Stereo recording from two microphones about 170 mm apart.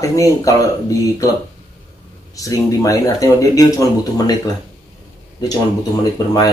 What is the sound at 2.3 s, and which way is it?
Speech, 20° left (ahead or behind).